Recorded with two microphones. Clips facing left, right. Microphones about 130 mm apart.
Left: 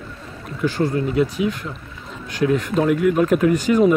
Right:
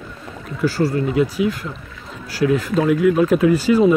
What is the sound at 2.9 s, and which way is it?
Speech, 35° right (ahead or behind).